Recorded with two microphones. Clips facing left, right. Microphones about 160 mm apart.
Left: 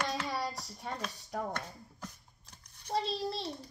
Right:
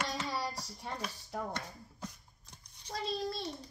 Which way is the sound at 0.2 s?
20° left (ahead or behind).